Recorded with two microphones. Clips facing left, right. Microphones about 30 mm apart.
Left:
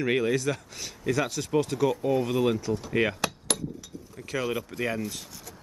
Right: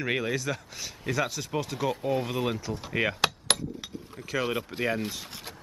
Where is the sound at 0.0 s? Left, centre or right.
Centre.